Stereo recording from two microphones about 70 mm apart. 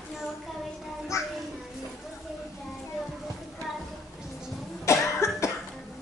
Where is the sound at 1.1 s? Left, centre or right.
Left.